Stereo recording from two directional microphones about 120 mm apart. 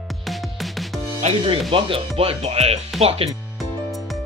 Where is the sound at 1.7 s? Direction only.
50° right (ahead or behind).